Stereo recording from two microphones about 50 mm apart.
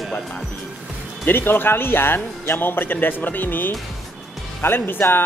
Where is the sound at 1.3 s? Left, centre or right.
Left.